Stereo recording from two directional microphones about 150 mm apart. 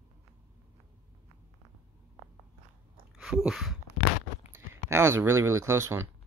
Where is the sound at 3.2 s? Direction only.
5° right (ahead or behind).